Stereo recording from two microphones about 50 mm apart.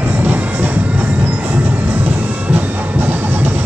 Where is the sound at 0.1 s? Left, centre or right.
Right.